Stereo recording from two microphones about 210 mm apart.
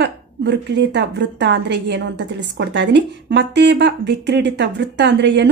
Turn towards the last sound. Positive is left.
turn(degrees=-55)  # may be behind; listen again after turning